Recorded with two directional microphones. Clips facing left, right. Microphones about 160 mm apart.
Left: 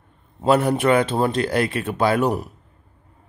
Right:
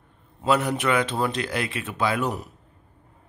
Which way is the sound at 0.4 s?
35° left (ahead or behind).